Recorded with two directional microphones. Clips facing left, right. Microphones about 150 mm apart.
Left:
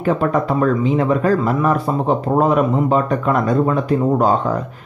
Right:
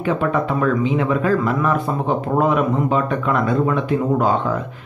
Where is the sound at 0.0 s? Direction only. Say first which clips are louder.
Left 2 dB; 40° left (ahead or behind).